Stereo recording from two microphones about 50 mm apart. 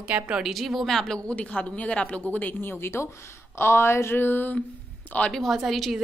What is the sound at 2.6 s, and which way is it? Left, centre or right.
Speech, left.